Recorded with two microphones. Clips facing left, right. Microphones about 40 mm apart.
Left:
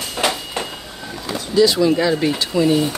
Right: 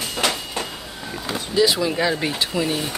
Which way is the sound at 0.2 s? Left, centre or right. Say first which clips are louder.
Left 3 dB; centre.